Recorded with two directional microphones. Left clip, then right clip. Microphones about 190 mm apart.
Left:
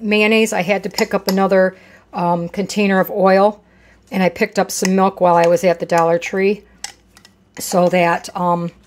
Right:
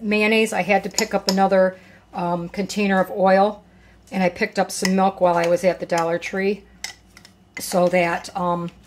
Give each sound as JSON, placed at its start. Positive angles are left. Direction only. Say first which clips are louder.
{"t": 0.0, "sound": "speech", "louder": "left 4 dB", "side_deg": 40}
{"t": 7.9, "sound": "speech", "louder": "left 5 dB", "side_deg": 40}